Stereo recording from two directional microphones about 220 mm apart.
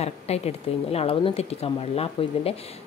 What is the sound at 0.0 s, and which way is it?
A woman's voice, 30° left (ahead or behind).